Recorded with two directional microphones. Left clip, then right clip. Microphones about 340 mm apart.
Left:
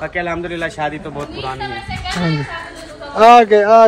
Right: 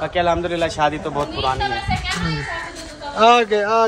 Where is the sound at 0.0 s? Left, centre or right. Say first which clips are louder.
Right 2 dB; centre.